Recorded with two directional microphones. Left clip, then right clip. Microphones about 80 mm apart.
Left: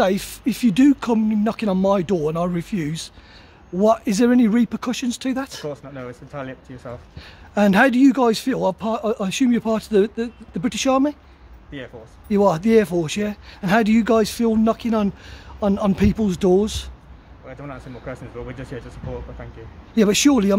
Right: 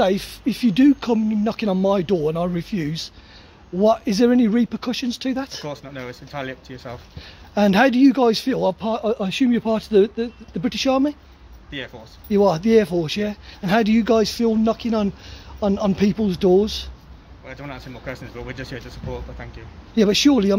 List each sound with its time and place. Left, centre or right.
0.0 s speech: left
1.4 s a man's voice: left
2.3 s a man's voice: left
3.7 s speech: left
4.5 s speech: left
5.9 s speech: left
7.2 s a man's voice: left
10.8 s speech: left
12.3 s a man's voice: left
16.0 s speech: left
18.5 s a man's voice: left
20.0 s speech: left